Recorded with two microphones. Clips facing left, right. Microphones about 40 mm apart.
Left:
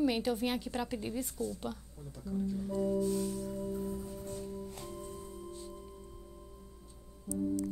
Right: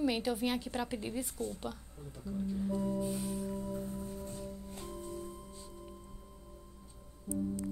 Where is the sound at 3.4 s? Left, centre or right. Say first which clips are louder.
Left 2 dB; right.